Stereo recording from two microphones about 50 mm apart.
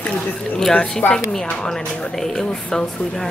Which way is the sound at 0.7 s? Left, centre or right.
Centre.